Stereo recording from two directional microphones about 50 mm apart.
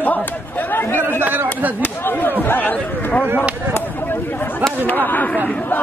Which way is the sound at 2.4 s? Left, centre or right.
Left.